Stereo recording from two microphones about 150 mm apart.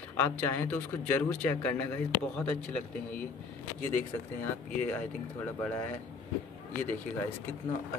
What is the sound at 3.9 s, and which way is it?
Speech, 10° left (ahead or behind).